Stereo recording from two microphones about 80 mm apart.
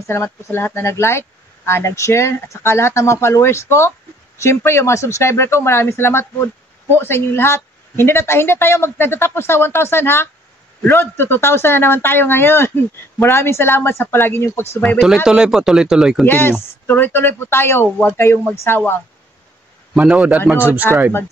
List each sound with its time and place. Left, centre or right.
0.0 s a woman's voice: left
15.2 s speech: centre
16.3 s speech: left
20.0 s a man's voice: centre